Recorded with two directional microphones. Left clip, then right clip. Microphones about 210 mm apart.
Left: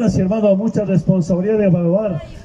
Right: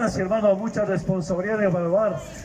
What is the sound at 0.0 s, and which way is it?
A man's voice, 25° left (ahead or behind).